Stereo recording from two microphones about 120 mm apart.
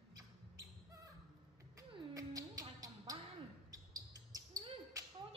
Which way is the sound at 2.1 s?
30° right (ahead or behind).